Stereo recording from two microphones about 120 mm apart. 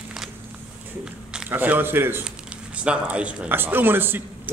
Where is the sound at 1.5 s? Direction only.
15° right (ahead or behind).